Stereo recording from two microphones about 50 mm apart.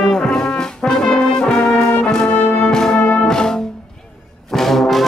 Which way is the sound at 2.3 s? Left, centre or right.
Left.